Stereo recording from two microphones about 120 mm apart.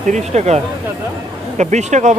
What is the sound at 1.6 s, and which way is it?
Speech, 75° right (ahead or behind).